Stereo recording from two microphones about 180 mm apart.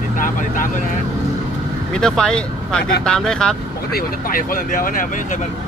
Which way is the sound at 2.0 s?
5° left (ahead or behind).